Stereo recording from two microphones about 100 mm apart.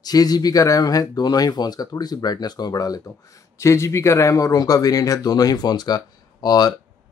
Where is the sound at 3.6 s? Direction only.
30° left (ahead or behind).